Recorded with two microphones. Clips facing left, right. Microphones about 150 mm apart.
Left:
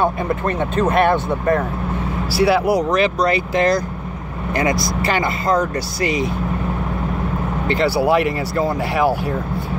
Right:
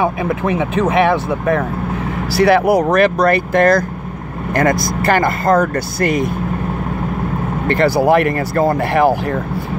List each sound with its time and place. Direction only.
0.3 s speech: 85° right
2.4 s speech: 55° right (ahead or behind)
7.6 s speech: 55° right (ahead or behind)